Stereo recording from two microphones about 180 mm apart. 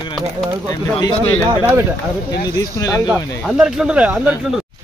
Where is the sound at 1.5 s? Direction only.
15° right (ahead or behind).